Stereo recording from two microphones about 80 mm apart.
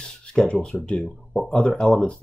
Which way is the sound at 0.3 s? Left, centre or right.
Centre.